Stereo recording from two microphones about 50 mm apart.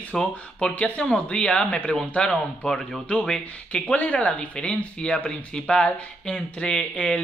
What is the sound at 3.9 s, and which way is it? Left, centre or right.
Speech, left.